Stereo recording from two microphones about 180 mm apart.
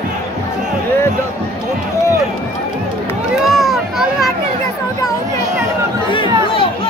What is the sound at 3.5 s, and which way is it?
Children playing, centre (ahead or behind).